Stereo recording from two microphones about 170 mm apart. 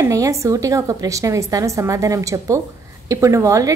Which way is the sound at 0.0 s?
20° right (ahead or behind).